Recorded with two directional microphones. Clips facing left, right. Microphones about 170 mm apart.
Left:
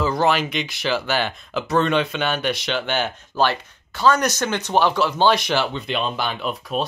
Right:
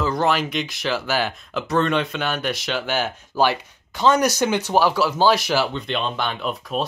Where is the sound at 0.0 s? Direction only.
Centre (ahead or behind).